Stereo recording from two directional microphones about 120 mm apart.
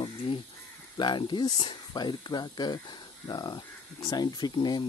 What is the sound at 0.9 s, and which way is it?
Speech, 40° left (ahead or behind).